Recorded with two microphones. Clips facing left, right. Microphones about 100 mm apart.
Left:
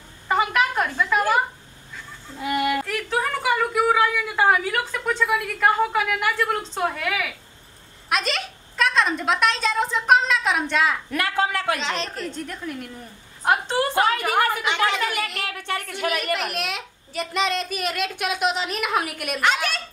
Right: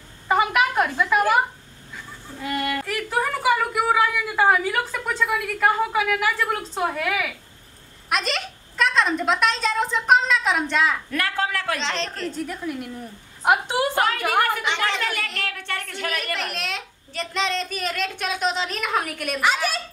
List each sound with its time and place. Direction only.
0.3 s a sound: 10° right (ahead or behind)
2.4 s a woman's voice: 10° left (ahead or behind)
2.9 s a woman's voice: 5° right (ahead or behind)
11.1 s a woman's voice: 20° left (ahead or behind)
11.8 s a woman's voice: 10° left (ahead or behind)
12.3 s a woman's voice: 5° right (ahead or behind)
14.5 s a woman's voice: 5° left (ahead or behind)